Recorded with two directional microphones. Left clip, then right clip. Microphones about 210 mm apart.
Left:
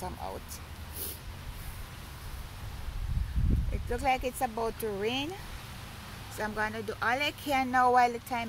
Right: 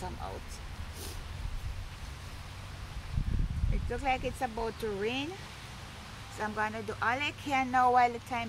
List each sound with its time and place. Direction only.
3.9 s speech: 20° left (ahead or behind)
6.4 s speech: 20° left (ahead or behind)